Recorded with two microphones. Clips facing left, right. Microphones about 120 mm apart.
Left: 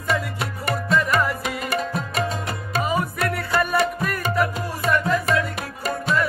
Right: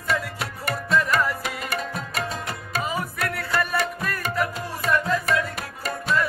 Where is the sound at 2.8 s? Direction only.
Centre (ahead or behind).